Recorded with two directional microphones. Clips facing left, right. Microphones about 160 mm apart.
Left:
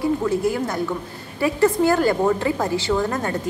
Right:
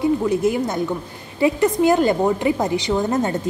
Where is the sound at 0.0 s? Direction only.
20° right (ahead or behind).